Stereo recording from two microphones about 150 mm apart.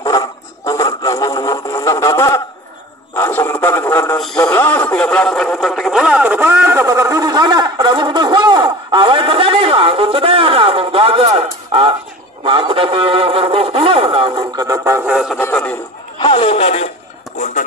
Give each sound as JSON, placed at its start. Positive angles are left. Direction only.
{"t": 0.0, "sound": "a sound", "side_deg": 25}
{"t": 3.2, "sound": "radio", "side_deg": 15}
{"t": 4.4, "sound": "speech", "side_deg": 15}
{"t": 11.7, "sound": "a sound", "side_deg": -35}
{"t": 12.4, "sound": "a man's voice", "side_deg": -35}
{"t": 15.0, "sound": "speech", "side_deg": 0}
{"t": 15.3, "sound": "speech", "side_deg": 15}
{"t": 16.2, "sound": "speech", "side_deg": 40}